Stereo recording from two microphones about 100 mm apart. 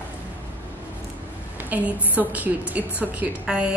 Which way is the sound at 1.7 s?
15° right (ahead or behind).